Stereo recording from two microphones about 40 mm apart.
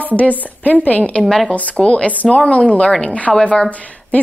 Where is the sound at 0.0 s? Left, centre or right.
Left.